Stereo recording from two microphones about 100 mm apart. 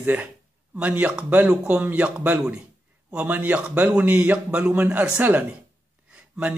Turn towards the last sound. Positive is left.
turn(degrees=-10)  # may be behind; listen again after turning